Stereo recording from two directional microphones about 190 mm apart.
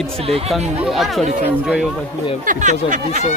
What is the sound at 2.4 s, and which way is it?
Speech, 40° right (ahead or behind).